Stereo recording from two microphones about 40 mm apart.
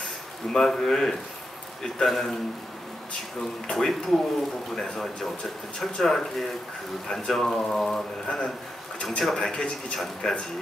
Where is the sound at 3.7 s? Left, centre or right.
Centre.